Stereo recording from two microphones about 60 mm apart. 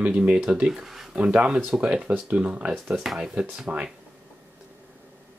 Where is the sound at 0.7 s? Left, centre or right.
Centre.